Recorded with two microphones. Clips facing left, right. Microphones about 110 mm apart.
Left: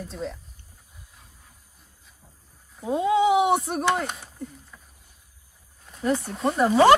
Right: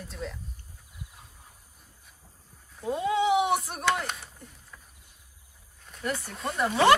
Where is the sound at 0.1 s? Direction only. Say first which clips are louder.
Left 3 dB; 35° left (ahead or behind).